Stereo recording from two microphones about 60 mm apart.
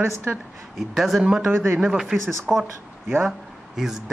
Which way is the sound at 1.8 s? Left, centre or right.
Centre.